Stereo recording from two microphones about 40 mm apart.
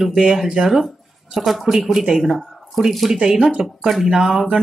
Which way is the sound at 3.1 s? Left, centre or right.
Centre.